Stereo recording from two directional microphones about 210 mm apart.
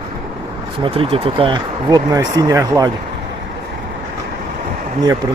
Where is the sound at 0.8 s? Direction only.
25° right (ahead or behind).